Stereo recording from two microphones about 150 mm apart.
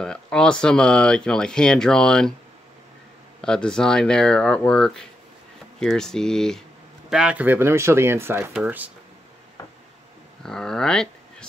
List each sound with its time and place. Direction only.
0.0 s speech: 5° left (ahead or behind)
3.3 s speech: 5° left (ahead or behind); by 8.9 s 10° right (ahead or behind)
10.4 s speech: 5° left (ahead or behind)